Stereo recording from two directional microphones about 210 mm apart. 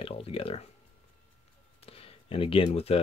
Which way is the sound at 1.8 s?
25° left (ahead or behind).